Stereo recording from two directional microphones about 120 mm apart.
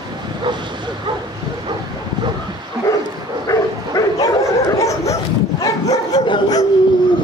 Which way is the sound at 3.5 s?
30° left (ahead or behind).